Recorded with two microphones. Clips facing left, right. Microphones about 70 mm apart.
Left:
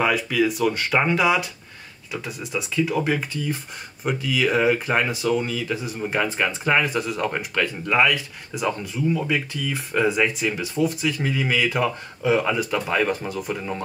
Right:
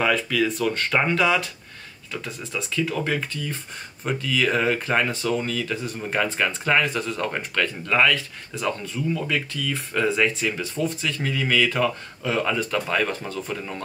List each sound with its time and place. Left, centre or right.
0.0 s speech: centre